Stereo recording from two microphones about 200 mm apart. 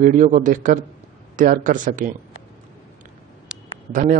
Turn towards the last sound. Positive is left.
turn(degrees=-45)  # may be behind; listen again after turning